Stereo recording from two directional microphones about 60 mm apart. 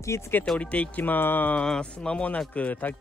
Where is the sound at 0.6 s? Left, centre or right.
Left.